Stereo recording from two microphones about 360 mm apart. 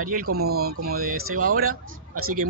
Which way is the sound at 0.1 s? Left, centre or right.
Right.